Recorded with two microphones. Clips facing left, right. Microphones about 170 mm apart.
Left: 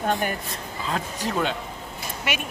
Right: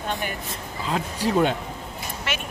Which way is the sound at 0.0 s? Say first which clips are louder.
Left 4 dB; 45° left (ahead or behind).